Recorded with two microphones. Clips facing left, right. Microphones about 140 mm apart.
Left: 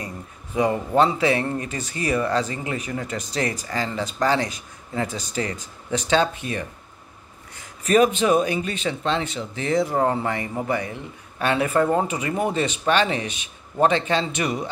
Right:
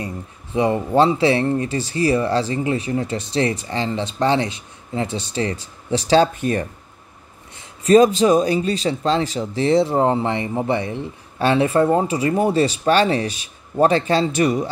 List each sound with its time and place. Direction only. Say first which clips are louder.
0.0 s speech: right 5 dB; 25° right (ahead or behind); by 6.7 s 45° right (ahead or behind)
7.5 s speech: right 6 dB; 30° right (ahead or behind)